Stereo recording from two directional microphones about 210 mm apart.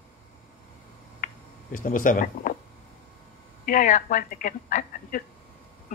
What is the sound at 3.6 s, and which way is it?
A woman's voice, 40° left (ahead or behind).